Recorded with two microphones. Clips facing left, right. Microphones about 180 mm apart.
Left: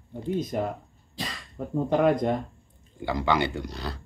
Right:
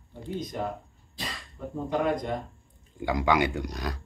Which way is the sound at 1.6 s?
55° left (ahead or behind).